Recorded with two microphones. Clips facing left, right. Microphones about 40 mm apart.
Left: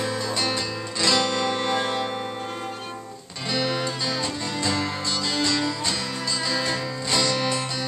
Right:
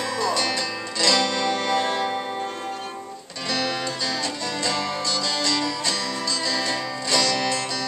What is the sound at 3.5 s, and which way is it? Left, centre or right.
Music, centre.